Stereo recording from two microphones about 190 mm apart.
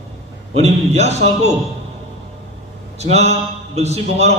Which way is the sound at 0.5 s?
35° right (ahead or behind).